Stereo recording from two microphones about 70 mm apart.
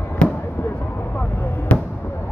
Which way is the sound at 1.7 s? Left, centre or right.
Centre.